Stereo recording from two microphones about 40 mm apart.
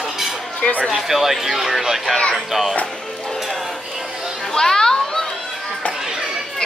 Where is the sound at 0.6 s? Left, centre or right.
Left.